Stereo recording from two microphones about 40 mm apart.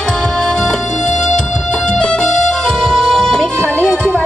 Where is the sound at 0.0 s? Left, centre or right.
Centre.